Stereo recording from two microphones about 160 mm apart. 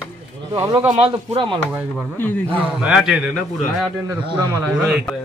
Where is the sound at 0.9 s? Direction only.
30° right (ahead or behind).